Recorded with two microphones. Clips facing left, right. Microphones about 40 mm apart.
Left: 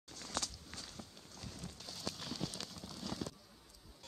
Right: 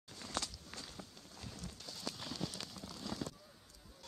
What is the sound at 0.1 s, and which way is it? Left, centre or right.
Walk, centre.